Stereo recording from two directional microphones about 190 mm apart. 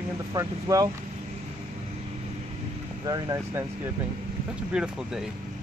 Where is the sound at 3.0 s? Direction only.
20° right (ahead or behind).